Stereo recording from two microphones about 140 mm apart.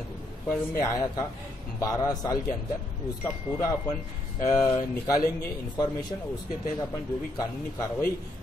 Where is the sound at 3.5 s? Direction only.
5° left (ahead or behind).